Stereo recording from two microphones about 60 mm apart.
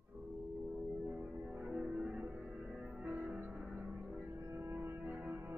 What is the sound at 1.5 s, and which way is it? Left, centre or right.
Music, right.